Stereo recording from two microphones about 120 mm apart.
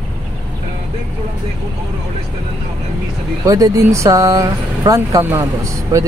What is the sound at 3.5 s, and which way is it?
Speech, 25° right (ahead or behind).